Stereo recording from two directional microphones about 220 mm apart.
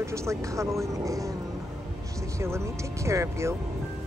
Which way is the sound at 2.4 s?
10° right (ahead or behind).